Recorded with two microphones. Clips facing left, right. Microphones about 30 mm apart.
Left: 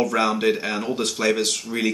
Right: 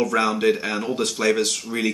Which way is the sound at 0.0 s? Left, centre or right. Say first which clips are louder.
Even; centre.